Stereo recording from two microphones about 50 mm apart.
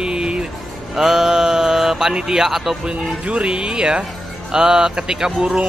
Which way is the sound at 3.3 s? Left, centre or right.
Right.